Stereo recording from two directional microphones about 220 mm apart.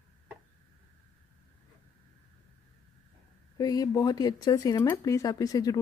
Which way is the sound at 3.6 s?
15° left (ahead or behind).